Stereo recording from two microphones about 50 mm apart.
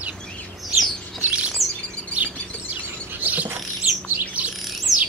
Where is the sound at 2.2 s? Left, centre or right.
Right.